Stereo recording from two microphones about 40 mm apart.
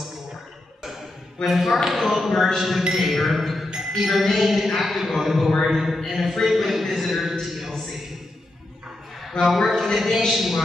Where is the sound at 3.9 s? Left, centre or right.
Centre.